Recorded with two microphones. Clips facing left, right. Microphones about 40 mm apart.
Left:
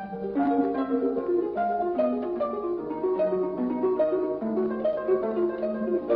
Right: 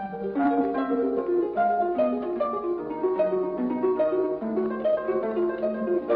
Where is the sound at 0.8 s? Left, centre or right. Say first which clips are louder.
Right 1 dB; centre.